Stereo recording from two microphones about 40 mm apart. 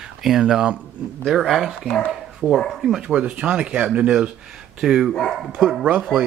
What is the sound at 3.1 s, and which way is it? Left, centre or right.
Speech, right.